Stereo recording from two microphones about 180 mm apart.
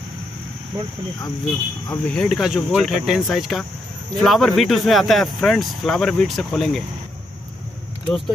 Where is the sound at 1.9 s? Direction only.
5° left (ahead or behind).